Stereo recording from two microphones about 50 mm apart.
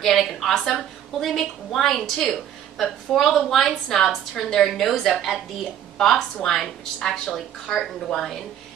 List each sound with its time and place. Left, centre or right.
0.0 s a woman's voice: centre
7.0 s a woman's voice: centre
7.3 s a woman's voice: centre